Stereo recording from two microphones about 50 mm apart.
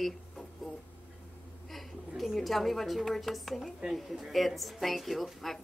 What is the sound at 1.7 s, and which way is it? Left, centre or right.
Speech, centre.